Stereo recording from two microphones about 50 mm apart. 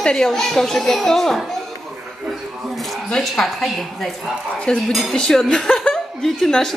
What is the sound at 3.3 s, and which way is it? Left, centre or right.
A woman's voice, centre.